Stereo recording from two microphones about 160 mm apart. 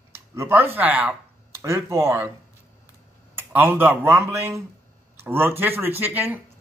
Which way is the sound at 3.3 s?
15° right (ahead or behind).